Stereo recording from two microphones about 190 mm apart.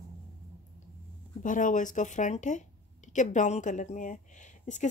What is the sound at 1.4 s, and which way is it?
Speech, 45° left (ahead or behind).